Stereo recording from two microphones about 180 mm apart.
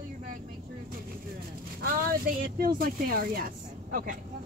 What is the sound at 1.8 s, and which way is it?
Speech, 55° right (ahead or behind).